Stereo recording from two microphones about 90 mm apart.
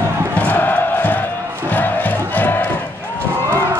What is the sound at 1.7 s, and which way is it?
Music, 20° left (ahead or behind).